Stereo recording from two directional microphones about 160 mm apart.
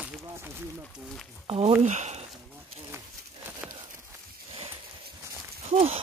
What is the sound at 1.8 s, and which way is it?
Speech, 45° right (ahead or behind).